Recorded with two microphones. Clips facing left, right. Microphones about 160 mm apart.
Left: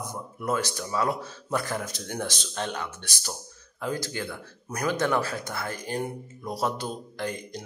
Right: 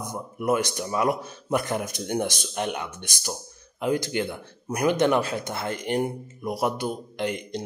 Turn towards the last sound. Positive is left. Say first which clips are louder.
# right 4 dB
turn(degrees=-20)  # may be behind; listen again after turning